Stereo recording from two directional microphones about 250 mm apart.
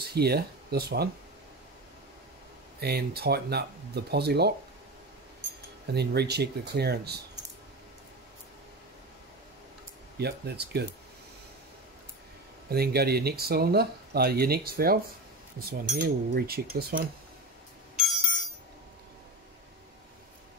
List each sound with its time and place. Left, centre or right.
0.0 s speech: right
2.8 s speech: right
5.9 s speech: right
10.1 s speech: right
12.6 s speech: right